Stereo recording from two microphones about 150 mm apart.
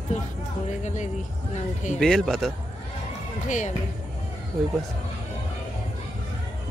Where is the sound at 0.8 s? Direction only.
50° left (ahead or behind).